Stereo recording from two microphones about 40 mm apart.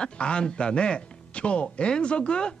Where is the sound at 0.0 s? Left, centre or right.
Left.